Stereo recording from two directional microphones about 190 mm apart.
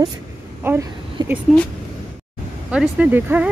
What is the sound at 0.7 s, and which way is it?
Speech, 10° right (ahead or behind).